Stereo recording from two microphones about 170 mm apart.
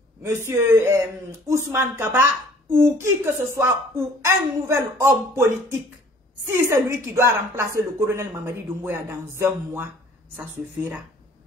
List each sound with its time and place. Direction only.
0.2 s speech: 15° right (ahead or behind)